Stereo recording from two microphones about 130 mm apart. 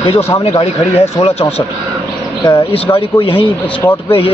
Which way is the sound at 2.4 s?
45° left (ahead or behind).